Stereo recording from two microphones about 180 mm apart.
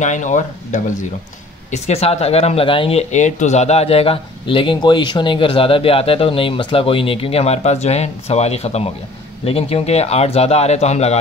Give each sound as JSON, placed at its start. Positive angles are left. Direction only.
{"t": 0.0, "sound": "speech", "side_deg": 45}